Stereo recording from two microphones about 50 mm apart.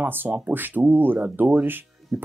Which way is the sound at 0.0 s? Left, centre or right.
Right.